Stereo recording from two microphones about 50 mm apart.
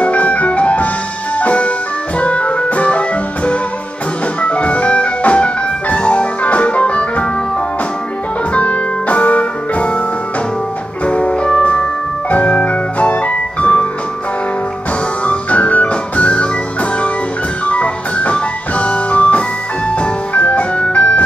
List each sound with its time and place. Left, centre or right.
0.0 s music: left
8.5 s music: left
11.1 s music: left
15.2 s music: left
17.6 s music: left